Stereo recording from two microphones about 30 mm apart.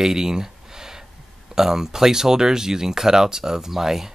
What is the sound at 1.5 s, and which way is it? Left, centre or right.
Speech, centre.